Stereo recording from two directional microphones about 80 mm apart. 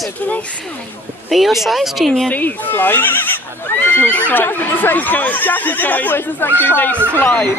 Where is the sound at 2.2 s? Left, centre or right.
Left.